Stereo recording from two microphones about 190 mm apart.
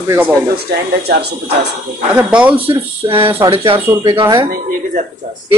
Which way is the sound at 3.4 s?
30° right (ahead or behind).